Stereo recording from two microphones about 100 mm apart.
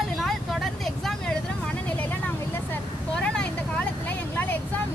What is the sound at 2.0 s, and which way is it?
Vehicle, 20° left (ahead or behind).